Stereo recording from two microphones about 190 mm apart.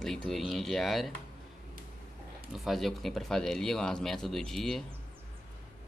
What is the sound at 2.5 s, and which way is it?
Speech, centre (ahead or behind).